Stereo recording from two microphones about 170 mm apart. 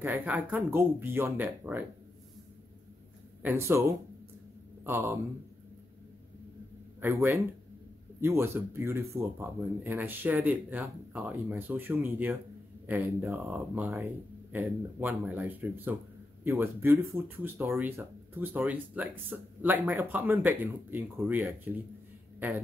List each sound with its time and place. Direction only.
0.0 s speech: 10° right (ahead or behind)
3.4 s speech: 15° right (ahead or behind)
7.0 s speech: 15° right (ahead or behind)